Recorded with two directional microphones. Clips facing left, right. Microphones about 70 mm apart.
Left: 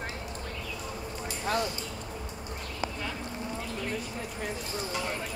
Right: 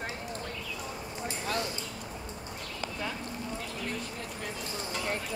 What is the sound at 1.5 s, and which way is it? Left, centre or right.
Speech, left.